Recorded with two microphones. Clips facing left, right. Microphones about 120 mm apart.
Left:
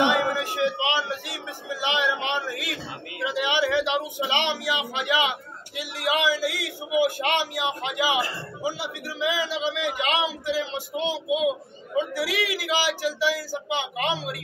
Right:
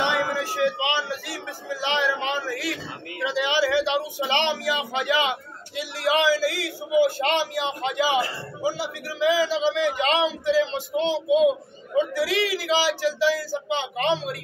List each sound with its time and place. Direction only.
0.0 s a sound: 20° left (ahead or behind)
0.6 s speech: 20° left (ahead or behind)
8.6 s a man's voice: 40° right (ahead or behind)
9.9 s speech: 5° left (ahead or behind)